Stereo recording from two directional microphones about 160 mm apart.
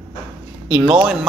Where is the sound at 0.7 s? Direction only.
5° right (ahead or behind).